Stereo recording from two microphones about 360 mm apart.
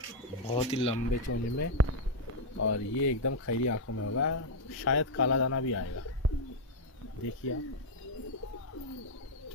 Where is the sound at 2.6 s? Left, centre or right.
Left.